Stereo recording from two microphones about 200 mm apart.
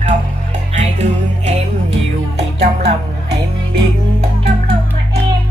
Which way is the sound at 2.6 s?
30° right (ahead or behind).